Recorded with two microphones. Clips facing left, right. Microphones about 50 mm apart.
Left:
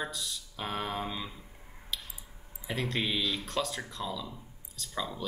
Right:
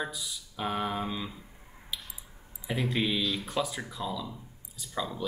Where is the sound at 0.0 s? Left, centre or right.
Centre.